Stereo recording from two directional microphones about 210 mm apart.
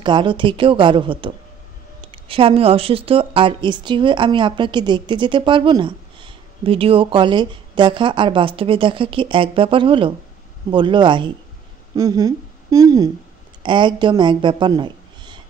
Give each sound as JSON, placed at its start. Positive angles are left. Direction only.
{"t": 0.0, "sound": "a woman's voice", "side_deg": -20}